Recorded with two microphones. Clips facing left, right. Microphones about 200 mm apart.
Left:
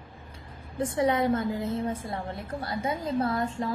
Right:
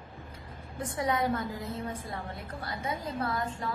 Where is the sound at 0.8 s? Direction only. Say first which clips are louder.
Left 5 dB; 25° left (ahead or behind).